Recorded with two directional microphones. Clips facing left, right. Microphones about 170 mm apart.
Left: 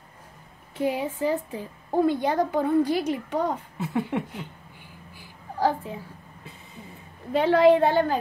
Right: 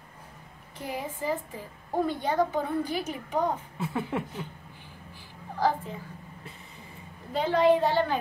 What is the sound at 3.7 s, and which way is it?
Speech, centre (ahead or behind).